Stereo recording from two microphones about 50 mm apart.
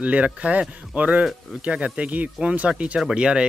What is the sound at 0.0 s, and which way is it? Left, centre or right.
Speech, right.